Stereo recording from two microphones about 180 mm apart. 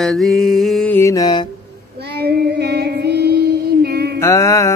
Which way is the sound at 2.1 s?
65° right (ahead or behind).